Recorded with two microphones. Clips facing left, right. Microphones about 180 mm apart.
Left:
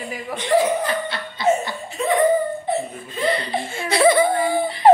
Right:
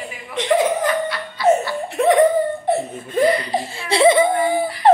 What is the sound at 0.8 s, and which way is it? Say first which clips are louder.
Laughter: right 4 dB; 25° left (ahead or behind).